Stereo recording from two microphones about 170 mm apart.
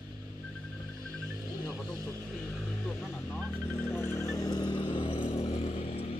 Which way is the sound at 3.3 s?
10° left (ahead or behind).